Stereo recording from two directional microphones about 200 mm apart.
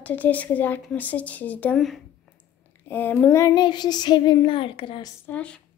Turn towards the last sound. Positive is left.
turn(degrees=5)  # may be behind; listen again after turning